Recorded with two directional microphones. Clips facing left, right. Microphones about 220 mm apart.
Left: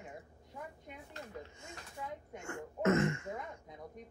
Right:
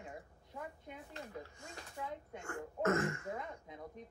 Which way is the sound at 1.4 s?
25° left (ahead or behind).